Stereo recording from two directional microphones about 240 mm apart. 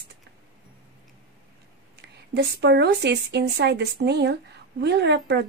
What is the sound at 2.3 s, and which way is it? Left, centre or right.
Speech, right.